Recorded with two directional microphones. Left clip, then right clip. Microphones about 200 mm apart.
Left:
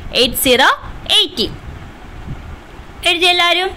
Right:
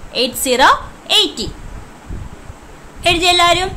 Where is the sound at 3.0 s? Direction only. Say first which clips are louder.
Right 1 dB; 10° left (ahead or behind).